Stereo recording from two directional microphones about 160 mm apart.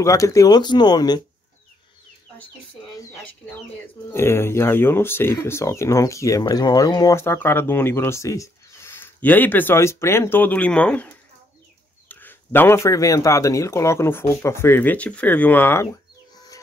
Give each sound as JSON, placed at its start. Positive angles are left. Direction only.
{"t": 0.0, "sound": "speech", "side_deg": 20}
{"t": 4.1, "sound": "speech", "side_deg": 15}